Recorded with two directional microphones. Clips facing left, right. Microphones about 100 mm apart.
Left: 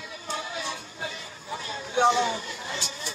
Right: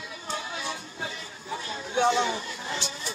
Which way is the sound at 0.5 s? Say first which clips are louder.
Even; 30° right (ahead or behind).